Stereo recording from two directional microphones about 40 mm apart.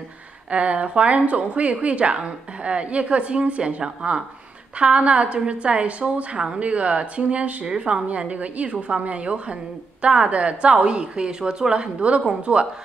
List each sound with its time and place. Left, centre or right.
0.5 s a woman's voice: right